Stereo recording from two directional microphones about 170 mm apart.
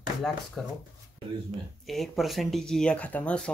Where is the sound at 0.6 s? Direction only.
5° left (ahead or behind).